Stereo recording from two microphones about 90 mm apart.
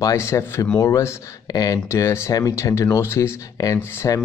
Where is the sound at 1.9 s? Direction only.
30° left (ahead or behind).